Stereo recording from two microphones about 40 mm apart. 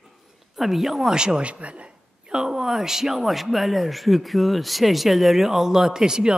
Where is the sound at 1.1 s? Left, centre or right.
Right.